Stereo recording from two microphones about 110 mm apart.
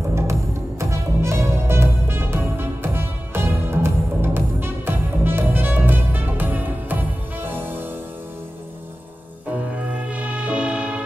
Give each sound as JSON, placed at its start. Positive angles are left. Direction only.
{"t": 0.1, "sound": "music", "side_deg": -25}
{"t": 10.0, "sound": "music", "side_deg": -10}